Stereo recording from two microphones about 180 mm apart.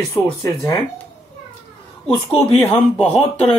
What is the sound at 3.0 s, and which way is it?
Speech, 35° left (ahead or behind).